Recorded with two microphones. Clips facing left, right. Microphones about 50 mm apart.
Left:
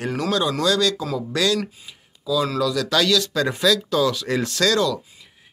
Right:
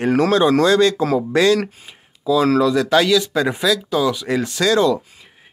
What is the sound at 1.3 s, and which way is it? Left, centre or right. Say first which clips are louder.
Speech: right 6 dB; right.